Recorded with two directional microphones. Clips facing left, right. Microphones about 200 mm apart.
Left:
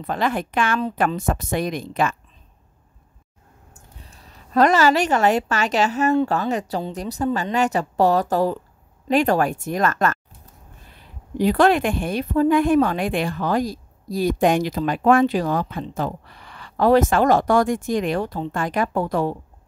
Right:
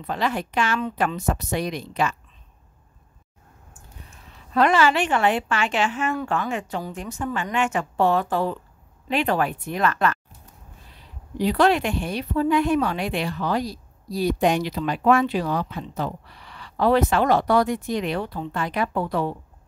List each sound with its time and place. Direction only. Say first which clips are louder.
0.0 s a woman's voice: left 3 dB; 50° left (ahead or behind)
4.1 s a woman's voice: left 4 dB; 40° left (ahead or behind)
11.3 s a woman's voice: left 3 dB; 50° left (ahead or behind)